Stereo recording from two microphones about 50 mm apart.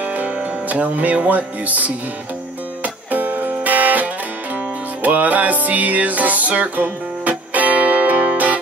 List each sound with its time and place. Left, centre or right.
0.0 s music: right